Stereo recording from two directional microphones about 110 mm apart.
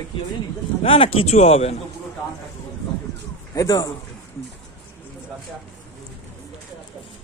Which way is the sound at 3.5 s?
30° left (ahead or behind).